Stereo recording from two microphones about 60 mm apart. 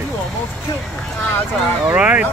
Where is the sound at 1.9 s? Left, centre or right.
Right.